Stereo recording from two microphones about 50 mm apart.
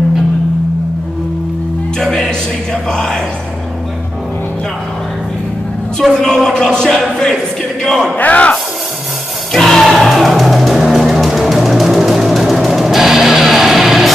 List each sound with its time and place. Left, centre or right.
2.0 s speech: centre
6.2 s speech: centre
7.8 s a sound: centre
8.2 s speech: left
9.5 s music: centre